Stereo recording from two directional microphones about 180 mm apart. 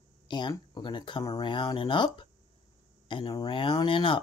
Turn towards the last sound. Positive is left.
turn(degrees=30)  # may be behind; listen again after turning